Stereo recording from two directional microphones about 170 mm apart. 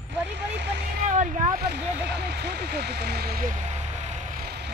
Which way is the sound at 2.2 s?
75° right (ahead or behind).